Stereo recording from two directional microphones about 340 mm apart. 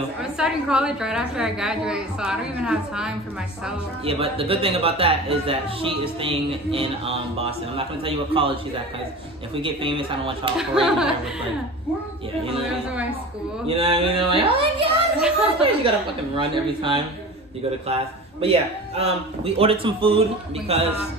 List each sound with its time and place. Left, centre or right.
0.2 s a woman's voice: centre
4.0 s speech: centre
9.6 s speech: centre
10.6 s a woman's voice: centre
13.7 s speech: centre